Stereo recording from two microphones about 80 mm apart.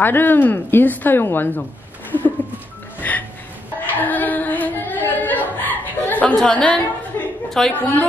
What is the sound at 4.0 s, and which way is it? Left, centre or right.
Carnatic music, left.